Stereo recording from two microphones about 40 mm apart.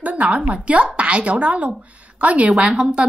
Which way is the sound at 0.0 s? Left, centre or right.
Right.